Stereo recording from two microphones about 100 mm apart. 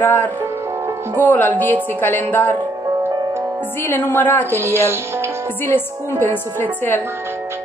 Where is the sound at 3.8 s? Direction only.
20° left (ahead or behind).